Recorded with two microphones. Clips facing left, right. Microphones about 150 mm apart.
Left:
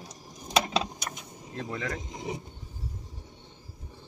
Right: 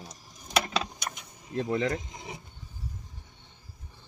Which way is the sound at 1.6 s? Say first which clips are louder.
Right 7 dB; 25° right (ahead or behind).